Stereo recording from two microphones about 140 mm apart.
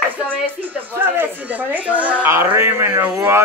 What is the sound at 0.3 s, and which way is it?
A woman's voice, 10° right (ahead or behind).